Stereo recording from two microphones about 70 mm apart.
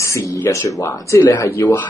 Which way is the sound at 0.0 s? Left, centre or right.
Left.